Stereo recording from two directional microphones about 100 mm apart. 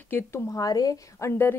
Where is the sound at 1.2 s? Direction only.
25° left (ahead or behind).